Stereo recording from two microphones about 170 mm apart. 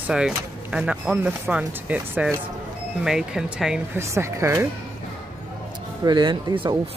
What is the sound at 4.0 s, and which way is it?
Speech, 15° right (ahead or behind).